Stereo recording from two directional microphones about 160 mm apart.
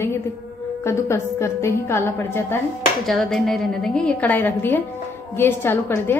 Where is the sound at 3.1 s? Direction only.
Centre (ahead or behind).